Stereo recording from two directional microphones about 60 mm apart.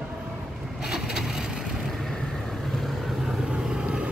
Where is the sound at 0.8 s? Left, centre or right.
Centre.